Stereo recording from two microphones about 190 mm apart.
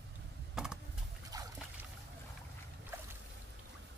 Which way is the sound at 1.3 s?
20° right (ahead or behind).